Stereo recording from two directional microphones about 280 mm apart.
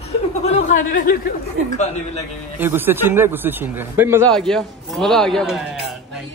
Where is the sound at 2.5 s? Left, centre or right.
Centre.